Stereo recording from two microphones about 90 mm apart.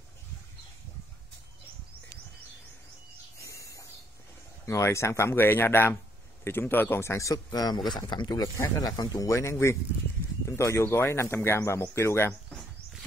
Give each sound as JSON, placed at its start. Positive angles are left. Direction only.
{"t": 3.3, "sound": "a sound", "side_deg": 35}
{"t": 4.6, "sound": "speech", "side_deg": 30}
{"t": 8.5, "sound": "speech", "side_deg": 35}
{"t": 8.9, "sound": "speech", "side_deg": 45}